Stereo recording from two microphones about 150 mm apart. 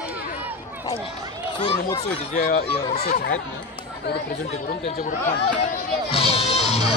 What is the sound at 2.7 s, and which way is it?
Speech, 40° left (ahead or behind).